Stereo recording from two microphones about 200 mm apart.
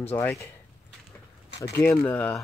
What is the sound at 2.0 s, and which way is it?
Speech, 10° left (ahead or behind).